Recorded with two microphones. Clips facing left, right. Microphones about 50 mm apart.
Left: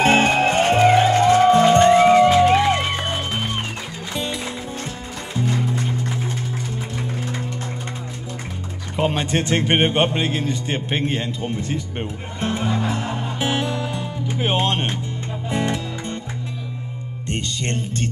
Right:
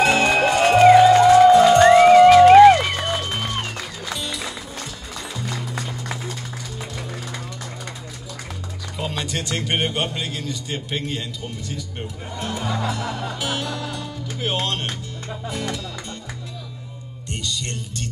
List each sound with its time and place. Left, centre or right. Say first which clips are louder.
0.0 s music: left 1 dB; left
8.9 s a man's voice: left 7 dB; left
15.5 s music: left 7 dB; left
17.3 s speech: left 4 dB; left